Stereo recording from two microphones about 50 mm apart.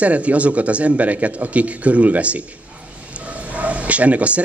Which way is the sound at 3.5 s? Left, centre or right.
Right.